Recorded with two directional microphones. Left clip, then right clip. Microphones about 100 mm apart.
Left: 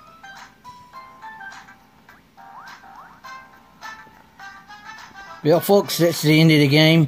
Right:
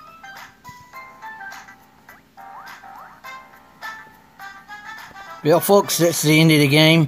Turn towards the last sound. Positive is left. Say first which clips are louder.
# right 1 dB
turn(degrees=5)  # may be behind; listen again after turning